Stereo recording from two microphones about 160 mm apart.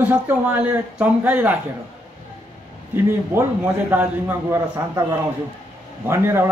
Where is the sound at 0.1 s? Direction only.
10° right (ahead or behind).